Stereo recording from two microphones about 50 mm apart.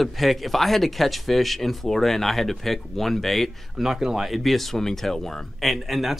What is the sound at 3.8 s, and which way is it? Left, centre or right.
Speech, centre.